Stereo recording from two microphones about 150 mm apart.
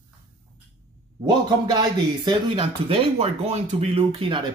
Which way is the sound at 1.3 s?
25° right (ahead or behind).